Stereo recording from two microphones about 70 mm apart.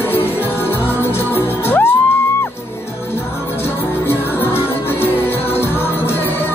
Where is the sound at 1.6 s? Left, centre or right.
Left.